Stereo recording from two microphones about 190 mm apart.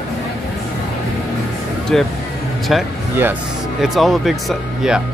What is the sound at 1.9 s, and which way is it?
Speech, 5° left (ahead or behind).